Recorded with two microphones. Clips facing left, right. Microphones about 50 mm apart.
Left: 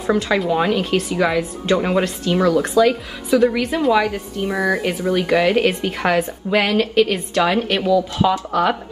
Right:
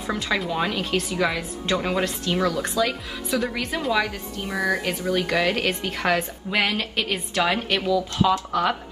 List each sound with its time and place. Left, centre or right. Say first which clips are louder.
0.0 s speech: left 7 dB; centre